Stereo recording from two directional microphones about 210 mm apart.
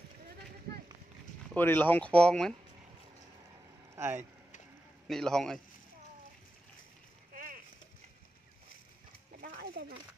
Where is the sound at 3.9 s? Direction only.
10° right (ahead or behind).